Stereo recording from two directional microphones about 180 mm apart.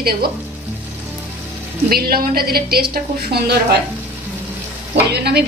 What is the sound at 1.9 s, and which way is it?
A woman's voice, 55° right (ahead or behind).